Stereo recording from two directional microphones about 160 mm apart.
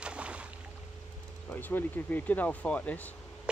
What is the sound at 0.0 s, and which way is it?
Boat, 5° right (ahead or behind).